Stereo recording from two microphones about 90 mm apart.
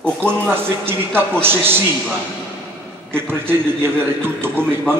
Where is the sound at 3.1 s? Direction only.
25° right (ahead or behind).